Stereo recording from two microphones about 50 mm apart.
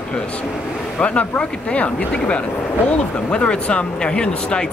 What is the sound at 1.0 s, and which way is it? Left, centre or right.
Speech, left.